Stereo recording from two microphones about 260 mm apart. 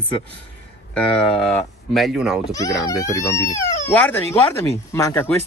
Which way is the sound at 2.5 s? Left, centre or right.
Centre.